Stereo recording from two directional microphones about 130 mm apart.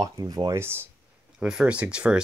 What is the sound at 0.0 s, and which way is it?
Speech, 30° right (ahead or behind).